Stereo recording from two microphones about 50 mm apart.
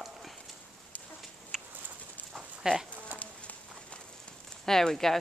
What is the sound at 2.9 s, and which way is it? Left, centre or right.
Bee, right.